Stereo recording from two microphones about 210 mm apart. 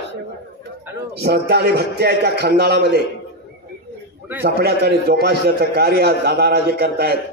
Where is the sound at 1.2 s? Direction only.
50° right (ahead or behind).